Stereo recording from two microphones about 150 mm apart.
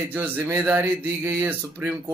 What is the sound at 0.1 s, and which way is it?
Speech, 15° right (ahead or behind).